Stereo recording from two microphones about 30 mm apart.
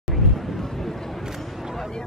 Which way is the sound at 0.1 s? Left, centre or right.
Centre.